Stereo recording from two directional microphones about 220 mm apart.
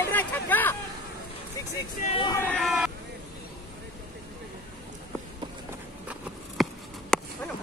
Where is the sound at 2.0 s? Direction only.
25° left (ahead or behind).